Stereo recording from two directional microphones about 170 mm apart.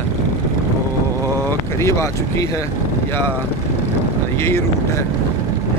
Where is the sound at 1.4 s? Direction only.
15° left (ahead or behind).